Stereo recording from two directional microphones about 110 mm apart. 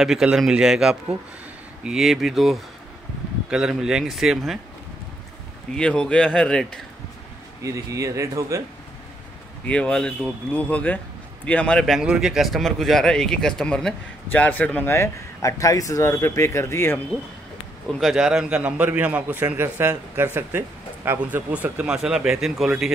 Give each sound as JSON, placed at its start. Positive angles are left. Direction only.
{"t": 0.0, "sound": "speech", "side_deg": -5}
{"t": 5.8, "sound": "speech", "side_deg": 10}
{"t": 7.6, "sound": "speech", "side_deg": -30}
{"t": 9.7, "sound": "speech", "side_deg": 10}
{"t": 17.9, "sound": "a man's voice", "side_deg": 0}